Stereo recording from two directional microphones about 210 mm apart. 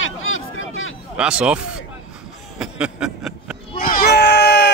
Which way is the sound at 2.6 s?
5° right (ahead or behind).